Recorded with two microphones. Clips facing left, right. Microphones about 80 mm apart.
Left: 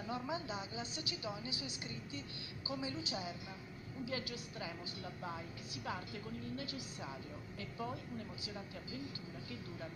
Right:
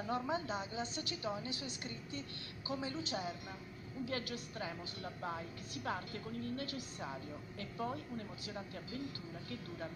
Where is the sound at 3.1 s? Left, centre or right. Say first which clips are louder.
Right 2 dB; right.